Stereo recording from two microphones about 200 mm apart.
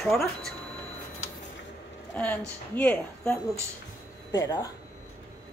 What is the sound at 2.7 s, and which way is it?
Speech, 10° left (ahead or behind).